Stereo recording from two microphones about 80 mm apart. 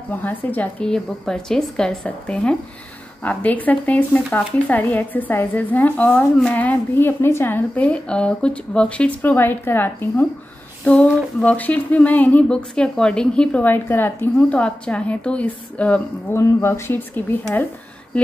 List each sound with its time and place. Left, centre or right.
0.1 s speech: left
0.8 s speech: centre; by 10.2 s left
11.4 s speech: centre
13.7 s speech: left
14.6 s speech: centre
16.3 s speech: left
18.1 s speech: centre